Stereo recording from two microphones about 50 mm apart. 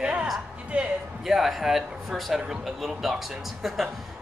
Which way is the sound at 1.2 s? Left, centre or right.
Centre.